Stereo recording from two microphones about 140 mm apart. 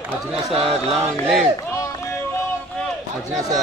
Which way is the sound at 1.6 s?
20° left (ahead or behind).